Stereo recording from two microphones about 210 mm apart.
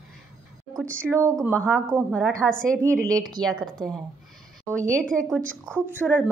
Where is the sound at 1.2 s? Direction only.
15° right (ahead or behind).